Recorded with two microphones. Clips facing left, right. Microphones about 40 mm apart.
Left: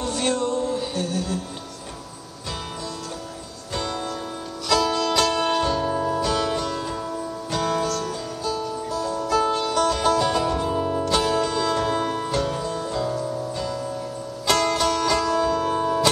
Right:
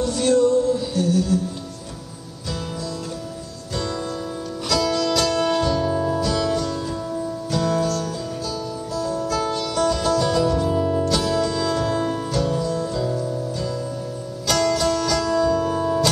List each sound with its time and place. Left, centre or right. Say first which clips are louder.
0.0 s music: right 6 dB; left
4.6 s music: even; left
5.8 s music: right 2 dB; centre
6.2 s music: right 1 dB; left
11.1 s music: even; left
14.5 s music: right 1 dB; left